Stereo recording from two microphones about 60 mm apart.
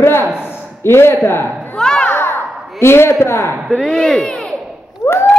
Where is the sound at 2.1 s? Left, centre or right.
Left.